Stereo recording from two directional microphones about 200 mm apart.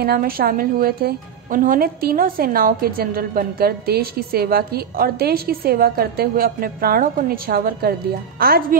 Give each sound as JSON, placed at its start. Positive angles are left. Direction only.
{"t": 0.0, "sound": "a woman's voice", "side_deg": -50}